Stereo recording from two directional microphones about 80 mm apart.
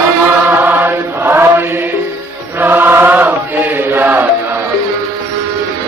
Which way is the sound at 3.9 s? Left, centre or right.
Right.